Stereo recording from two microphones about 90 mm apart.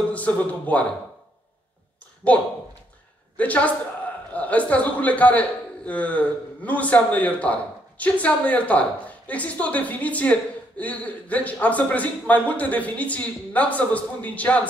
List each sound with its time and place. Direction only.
0.1 s a woman's voice: 15° left (ahead or behind)
2.3 s a woman's voice: 15° left (ahead or behind)